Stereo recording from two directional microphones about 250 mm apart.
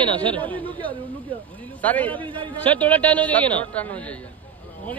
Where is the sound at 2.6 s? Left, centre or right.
Centre.